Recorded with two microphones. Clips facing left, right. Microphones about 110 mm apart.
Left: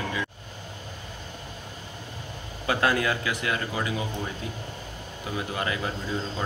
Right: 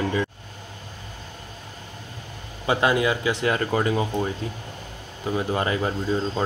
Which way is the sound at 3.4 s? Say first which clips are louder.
Right 7 dB; 45° right (ahead or behind).